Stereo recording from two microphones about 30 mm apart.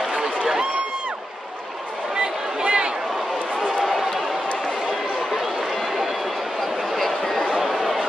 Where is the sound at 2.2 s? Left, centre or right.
Right.